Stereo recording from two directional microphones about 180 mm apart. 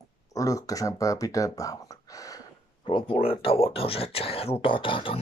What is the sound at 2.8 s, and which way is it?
Speech, 30° left (ahead or behind).